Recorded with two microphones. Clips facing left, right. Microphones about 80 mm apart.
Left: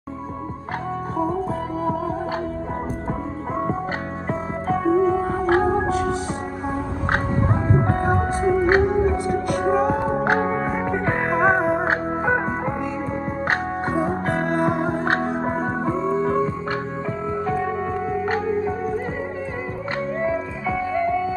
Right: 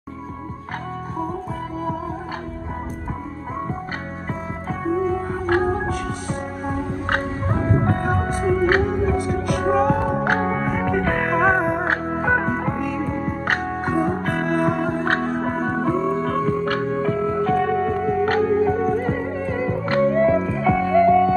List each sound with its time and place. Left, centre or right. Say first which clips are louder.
4.6 s music: left 4 dB; left
5.4 s music: even; centre
7.7 s music: left 1 dB; centre
17.4 s music: right 3 dB; centre